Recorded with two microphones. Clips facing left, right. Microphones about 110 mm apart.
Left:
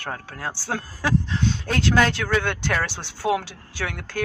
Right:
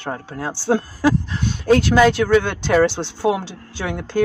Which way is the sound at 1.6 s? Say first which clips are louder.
Right 8 dB; 10° right (ahead or behind).